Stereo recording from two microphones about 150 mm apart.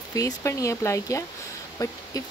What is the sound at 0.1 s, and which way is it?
Speech, 20° left (ahead or behind).